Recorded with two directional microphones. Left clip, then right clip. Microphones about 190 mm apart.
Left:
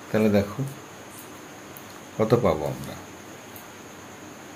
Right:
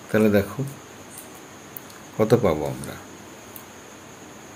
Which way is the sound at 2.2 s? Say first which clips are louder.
Right 2 dB; 25° right (ahead or behind).